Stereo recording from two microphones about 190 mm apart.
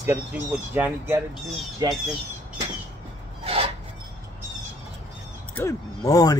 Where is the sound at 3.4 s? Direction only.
30° right (ahead or behind).